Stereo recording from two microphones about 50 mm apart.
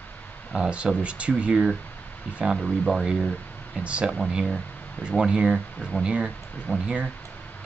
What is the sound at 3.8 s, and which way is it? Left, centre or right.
Speech, right.